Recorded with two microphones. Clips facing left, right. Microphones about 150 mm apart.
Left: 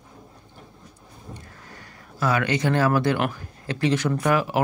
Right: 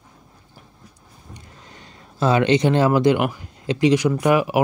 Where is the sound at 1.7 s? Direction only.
25° right (ahead or behind).